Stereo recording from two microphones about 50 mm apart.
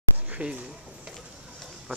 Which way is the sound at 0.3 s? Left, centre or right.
Right.